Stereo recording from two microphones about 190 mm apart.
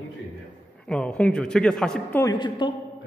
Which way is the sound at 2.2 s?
20° left (ahead or behind).